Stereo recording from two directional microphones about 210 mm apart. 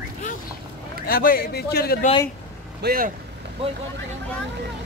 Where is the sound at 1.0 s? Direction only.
45° left (ahead or behind).